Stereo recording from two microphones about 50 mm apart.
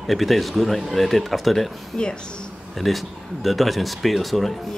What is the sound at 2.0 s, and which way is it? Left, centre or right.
Speech, centre.